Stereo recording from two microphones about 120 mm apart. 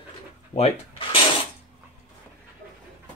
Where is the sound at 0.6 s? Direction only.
50° left (ahead or behind).